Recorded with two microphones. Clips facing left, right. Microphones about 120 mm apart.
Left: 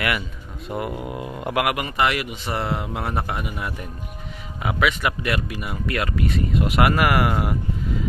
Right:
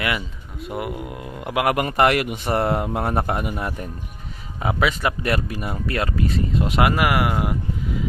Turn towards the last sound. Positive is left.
turn(degrees=-15)  # may be behind; listen again after turning